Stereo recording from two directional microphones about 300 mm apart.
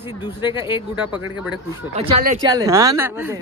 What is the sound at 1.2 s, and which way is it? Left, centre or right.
Speech, left.